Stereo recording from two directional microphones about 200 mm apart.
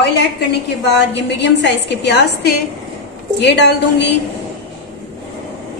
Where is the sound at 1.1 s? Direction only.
60° left (ahead or behind).